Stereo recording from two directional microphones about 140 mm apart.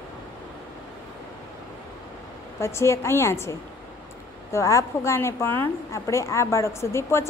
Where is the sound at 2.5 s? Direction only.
20° left (ahead or behind).